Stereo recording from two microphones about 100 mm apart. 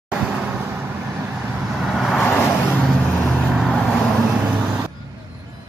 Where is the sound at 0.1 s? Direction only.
5° right (ahead or behind).